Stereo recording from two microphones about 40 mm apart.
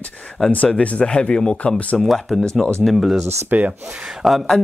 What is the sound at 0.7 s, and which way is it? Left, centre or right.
Speech, left.